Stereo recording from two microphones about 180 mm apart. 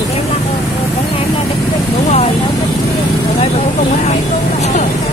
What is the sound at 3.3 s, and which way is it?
Speech, 35° left (ahead or behind).